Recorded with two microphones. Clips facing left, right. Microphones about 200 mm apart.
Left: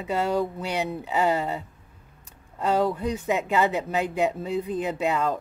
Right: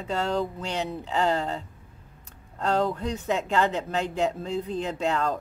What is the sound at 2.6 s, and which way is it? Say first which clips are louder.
Speech: left 2 dB; 5° left (ahead or behind).